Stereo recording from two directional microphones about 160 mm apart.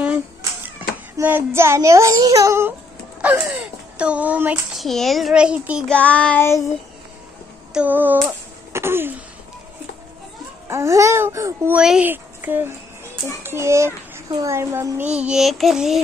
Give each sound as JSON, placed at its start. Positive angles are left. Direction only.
{"t": 0.7, "sound": "a child's voice", "side_deg": -10}
{"t": 5.9, "sound": "child singing", "side_deg": 10}
{"t": 7.7, "sound": "a child's voice", "side_deg": -10}
{"t": 8.3, "sound": "throat clearing", "side_deg": -15}
{"t": 10.7, "sound": "a child's voice", "side_deg": -20}
{"t": 15.1, "sound": "a child's voice", "side_deg": -5}